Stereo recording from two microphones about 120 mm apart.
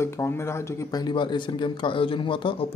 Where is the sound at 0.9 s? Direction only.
35° left (ahead or behind).